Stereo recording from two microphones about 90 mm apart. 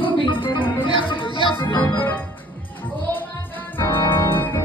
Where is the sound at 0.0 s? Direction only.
70° left (ahead or behind).